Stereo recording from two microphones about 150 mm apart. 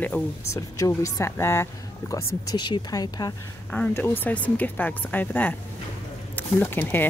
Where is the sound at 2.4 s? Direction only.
30° left (ahead or behind).